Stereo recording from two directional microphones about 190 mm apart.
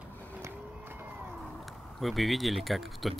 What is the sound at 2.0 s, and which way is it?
Speech, centre (ahead or behind).